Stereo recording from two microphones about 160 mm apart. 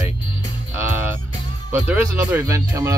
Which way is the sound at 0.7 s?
15° right (ahead or behind).